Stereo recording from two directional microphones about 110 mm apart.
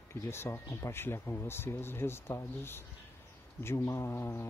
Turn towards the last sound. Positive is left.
turn(degrees=25)  # may be behind; listen again after turning